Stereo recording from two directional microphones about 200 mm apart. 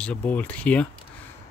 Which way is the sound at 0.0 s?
5° left (ahead or behind).